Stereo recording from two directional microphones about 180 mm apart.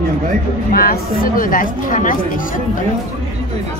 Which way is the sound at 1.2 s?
50° left (ahead or behind).